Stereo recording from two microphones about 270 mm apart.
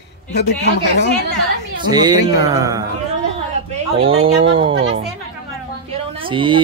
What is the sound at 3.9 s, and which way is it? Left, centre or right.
Speech, right.